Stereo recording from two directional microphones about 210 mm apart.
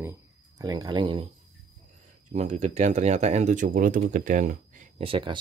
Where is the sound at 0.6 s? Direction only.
20° right (ahead or behind).